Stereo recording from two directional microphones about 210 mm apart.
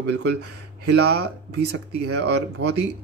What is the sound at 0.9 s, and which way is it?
Speech, 55° right (ahead or behind).